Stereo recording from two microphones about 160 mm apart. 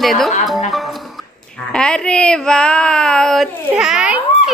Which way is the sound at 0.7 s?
Centre (ahead or behind).